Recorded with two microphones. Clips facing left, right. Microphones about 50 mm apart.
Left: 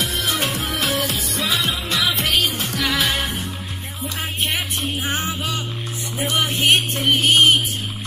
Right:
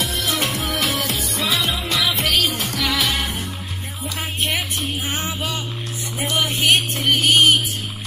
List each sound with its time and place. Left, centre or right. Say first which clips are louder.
0.0 s music: even; centre
5.0 s music: left 1 dB; centre
6.2 s music: even; left